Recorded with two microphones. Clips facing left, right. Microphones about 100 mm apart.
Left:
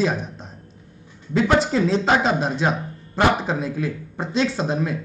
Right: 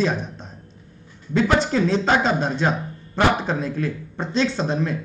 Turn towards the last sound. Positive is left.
turn(degrees=5)  # may be behind; listen again after turning